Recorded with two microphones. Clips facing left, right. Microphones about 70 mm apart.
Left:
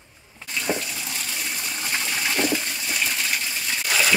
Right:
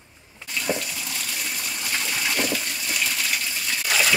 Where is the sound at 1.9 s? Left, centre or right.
Left.